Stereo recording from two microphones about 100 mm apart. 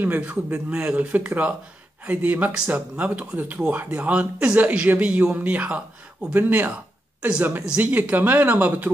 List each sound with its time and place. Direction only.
0.0 s speech: 15° right (ahead or behind)